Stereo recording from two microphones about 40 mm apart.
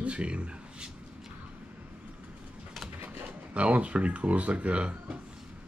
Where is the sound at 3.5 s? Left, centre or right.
Right.